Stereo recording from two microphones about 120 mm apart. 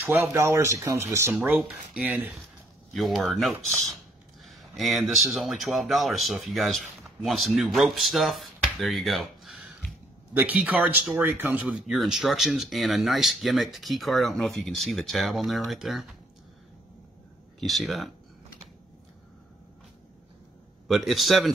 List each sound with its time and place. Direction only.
0.0 s speech: 15° right (ahead or behind)
2.9 s speech: centre (ahead or behind)
10.3 s speech: 15° right (ahead or behind)
17.6 s speech: centre (ahead or behind)
20.9 s speech: centre (ahead or behind)